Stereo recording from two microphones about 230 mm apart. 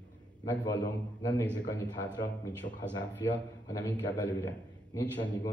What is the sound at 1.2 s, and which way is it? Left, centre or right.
A man's voice, centre.